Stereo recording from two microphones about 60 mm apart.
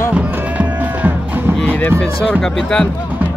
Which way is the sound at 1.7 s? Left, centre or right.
Left.